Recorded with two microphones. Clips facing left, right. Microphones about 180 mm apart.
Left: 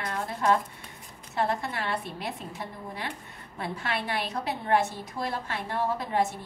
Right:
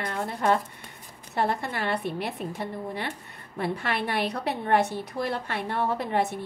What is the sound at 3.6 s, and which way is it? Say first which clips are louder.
A woman's voice: right 4 dB; 60° right (ahead or behind).